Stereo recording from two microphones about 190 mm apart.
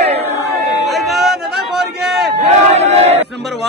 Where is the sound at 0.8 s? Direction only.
Centre (ahead or behind).